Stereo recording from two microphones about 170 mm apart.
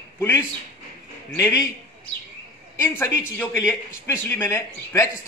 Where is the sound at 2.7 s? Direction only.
15° left (ahead or behind).